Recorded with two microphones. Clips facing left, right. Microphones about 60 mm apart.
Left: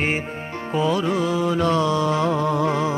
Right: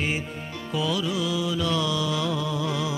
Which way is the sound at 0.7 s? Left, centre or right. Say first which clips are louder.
Left 6 dB; left.